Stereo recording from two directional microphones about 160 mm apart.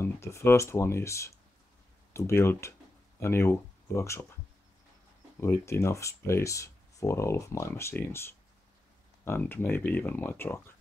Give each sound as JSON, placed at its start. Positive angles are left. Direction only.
{"t": 0.0, "sound": "speech", "side_deg": 15}
{"t": 5.4, "sound": "speech", "side_deg": 20}